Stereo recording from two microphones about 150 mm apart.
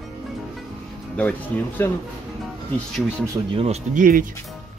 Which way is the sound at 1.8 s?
15° left (ahead or behind).